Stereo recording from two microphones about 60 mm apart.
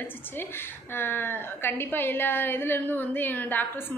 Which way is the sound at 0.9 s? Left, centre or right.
Left.